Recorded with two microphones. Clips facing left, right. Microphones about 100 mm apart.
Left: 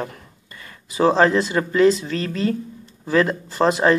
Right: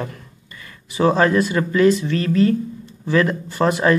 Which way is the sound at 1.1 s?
25° left (ahead or behind).